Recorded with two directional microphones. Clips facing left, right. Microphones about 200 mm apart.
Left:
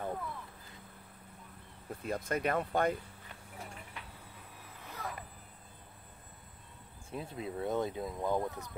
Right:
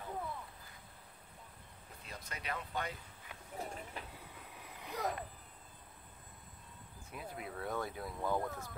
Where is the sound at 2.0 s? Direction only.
50° left (ahead or behind).